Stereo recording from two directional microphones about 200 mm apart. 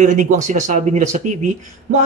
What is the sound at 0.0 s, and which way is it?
Speech, 35° right (ahead or behind).